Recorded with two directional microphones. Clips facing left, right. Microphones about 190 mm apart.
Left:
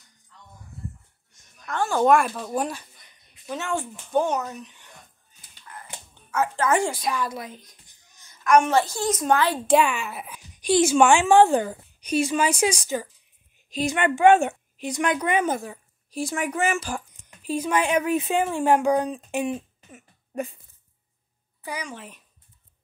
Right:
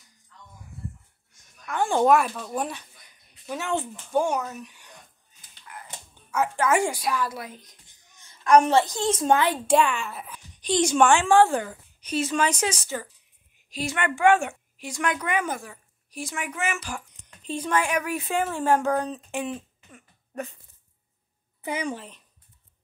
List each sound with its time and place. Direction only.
2.0 s a woman's voice: 5° right (ahead or behind)
6.3 s a woman's voice: 10° right (ahead or behind)
7.8 s a sound: 30° right (ahead or behind)
8.8 s a woman's voice: 20° right (ahead or behind)
9.8 s speech: 5° left (ahead or behind); by 11.8 s 25° left (ahead or behind)
12.0 s a woman's voice: 15° left (ahead or behind); by 17.0 s 30° left (ahead or behind)
17.4 s a woman's voice: 10° left (ahead or behind)
17.7 s speech: 25° left (ahead or behind)
21.6 s a woman's voice: 25° right (ahead or behind)
21.9 s speech: 5° left (ahead or behind)